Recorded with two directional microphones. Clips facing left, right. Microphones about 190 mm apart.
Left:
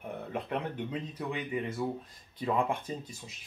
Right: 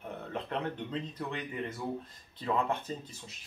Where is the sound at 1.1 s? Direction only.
10° left (ahead or behind).